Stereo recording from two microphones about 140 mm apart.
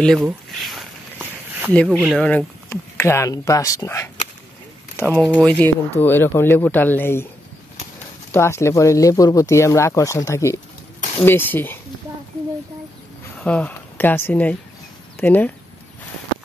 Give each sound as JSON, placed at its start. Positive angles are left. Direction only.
{"t": 0.0, "sound": "speech", "side_deg": 0}
{"t": 2.7, "sound": "speech", "side_deg": 20}
{"t": 5.1, "sound": "speech", "side_deg": 5}
{"t": 8.3, "sound": "speech", "side_deg": 20}
{"t": 13.4, "sound": "speech", "side_deg": 10}